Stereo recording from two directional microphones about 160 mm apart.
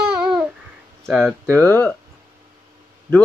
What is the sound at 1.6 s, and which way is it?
Speech, 10° left (ahead or behind).